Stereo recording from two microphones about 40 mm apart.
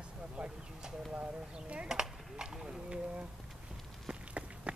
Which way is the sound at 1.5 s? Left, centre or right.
Right.